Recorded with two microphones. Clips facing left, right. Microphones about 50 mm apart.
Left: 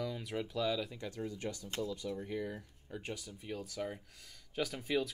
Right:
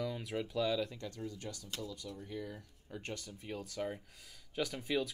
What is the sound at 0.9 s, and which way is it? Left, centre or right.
Speech, centre.